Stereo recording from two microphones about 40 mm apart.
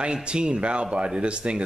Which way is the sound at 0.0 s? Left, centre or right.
Right.